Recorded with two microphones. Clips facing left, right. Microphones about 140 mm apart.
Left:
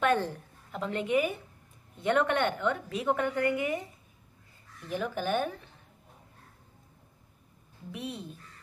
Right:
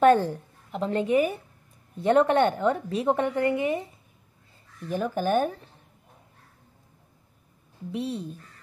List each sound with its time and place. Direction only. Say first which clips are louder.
0.0 s a woman's voice: right 8 dB; 40° right (ahead or behind)
4.8 s a woman's voice: right 5 dB; 40° right (ahead or behind)
7.9 s a woman's voice: right 8 dB; 35° right (ahead or behind)